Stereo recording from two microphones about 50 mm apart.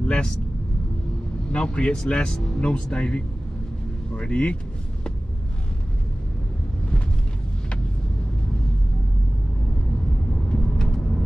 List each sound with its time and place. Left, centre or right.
0.0 s vehicle: left
1.5 s speech: centre
10.5 s vehicle: centre